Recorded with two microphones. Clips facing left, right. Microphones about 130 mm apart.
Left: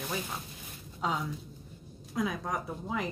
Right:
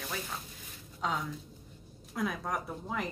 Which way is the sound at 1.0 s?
5° left (ahead or behind).